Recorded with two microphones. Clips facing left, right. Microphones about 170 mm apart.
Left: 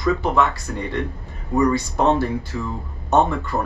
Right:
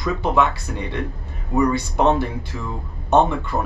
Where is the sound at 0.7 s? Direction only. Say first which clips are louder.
Left 1 dB; 15° right (ahead or behind).